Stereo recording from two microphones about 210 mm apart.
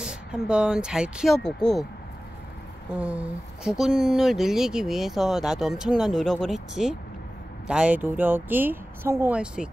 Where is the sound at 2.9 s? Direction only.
5° right (ahead or behind).